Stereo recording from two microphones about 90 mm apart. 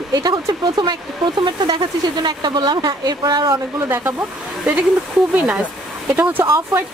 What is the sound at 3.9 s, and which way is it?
Speech, 25° right (ahead or behind).